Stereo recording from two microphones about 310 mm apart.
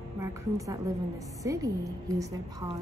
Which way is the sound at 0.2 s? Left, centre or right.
Centre.